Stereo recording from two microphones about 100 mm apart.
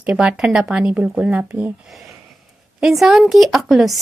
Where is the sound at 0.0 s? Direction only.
10° right (ahead or behind).